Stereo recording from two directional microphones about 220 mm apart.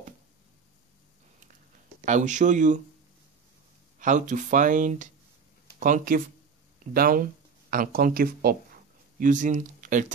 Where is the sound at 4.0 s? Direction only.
35° right (ahead or behind).